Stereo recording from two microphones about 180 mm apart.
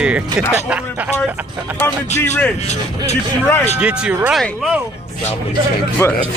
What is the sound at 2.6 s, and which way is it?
Speech, 35° left (ahead or behind).